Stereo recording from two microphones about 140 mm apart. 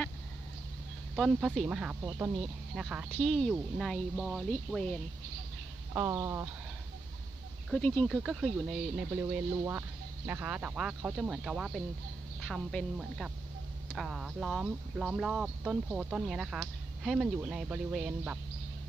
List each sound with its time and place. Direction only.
1.1 s speech: centre (ahead or behind)
3.1 s speech: 5° left (ahead or behind)
5.9 s speech: 20° right (ahead or behind)
7.7 s speech: 10° left (ahead or behind)
8.1 s speech: 5° right (ahead or behind)